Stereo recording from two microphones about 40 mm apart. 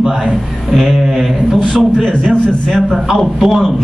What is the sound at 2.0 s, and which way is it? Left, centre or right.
Speech, centre.